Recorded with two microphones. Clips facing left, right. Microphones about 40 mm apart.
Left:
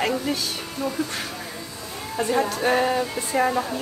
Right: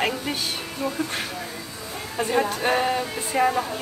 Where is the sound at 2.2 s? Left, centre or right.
Right.